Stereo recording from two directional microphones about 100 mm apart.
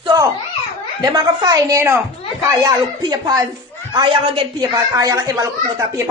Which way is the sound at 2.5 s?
30° right (ahead or behind).